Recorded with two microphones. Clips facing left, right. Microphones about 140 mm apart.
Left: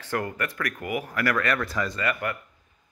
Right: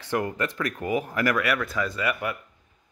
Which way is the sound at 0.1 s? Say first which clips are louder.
Right 2 dB; 20° right (ahead or behind).